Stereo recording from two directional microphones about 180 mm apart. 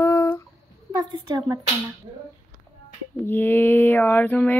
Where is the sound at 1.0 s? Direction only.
25° right (ahead or behind).